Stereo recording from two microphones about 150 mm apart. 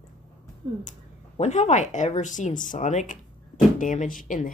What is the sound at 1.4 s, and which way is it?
Speech, 50° left (ahead or behind).